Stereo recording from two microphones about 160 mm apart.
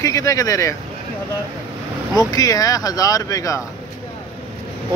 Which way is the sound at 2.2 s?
25° left (ahead or behind).